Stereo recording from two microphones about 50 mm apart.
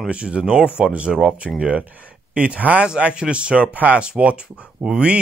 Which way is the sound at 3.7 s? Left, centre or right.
Right.